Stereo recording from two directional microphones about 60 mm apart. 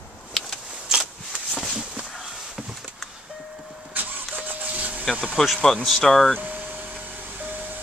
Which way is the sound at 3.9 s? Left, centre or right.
Right.